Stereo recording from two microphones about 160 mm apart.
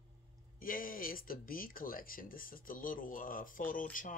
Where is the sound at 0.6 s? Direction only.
60° left (ahead or behind).